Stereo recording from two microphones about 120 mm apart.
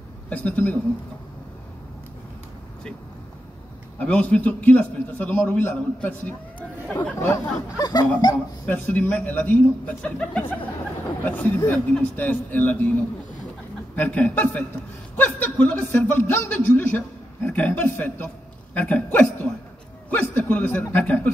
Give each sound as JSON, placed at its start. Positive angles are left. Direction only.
{"t": 0.3, "sound": "a man's voice", "side_deg": 10}
{"t": 4.0, "sound": "a man's voice", "side_deg": 10}
{"t": 7.2, "sound": "speech", "side_deg": 25}
{"t": 8.6, "sound": "a man's voice", "side_deg": 15}